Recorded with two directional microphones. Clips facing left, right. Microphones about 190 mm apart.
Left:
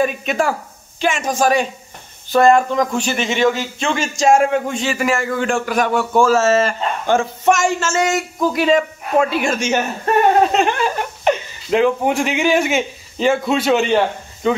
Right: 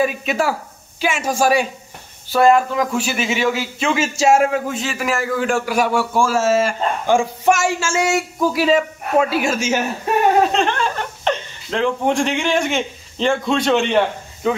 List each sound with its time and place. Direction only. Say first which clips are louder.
0.0 s a man's voice: left 1 dB; 5° right (ahead or behind)
10.5 s speech: left 2 dB; 10° left (ahead or behind)